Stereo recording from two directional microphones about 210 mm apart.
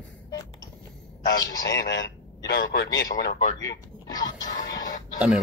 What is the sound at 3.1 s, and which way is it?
Speech, 40° left (ahead or behind).